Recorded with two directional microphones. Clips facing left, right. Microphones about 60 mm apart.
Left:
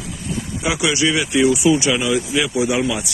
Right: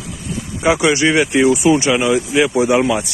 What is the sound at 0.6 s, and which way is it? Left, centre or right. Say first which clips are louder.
Speech: right 5 dB; right.